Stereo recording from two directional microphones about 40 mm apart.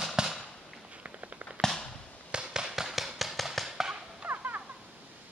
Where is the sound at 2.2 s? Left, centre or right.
Right.